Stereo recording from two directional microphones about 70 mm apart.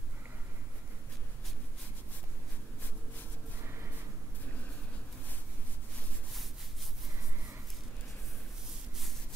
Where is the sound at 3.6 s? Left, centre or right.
Right.